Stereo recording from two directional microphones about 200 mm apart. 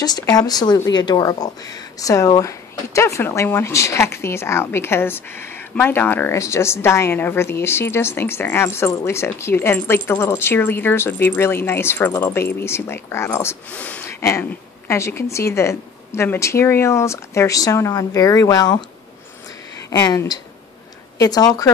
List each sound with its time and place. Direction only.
0.0 s speech: 20° left (ahead or behind)
19.9 s speech: 15° left (ahead or behind)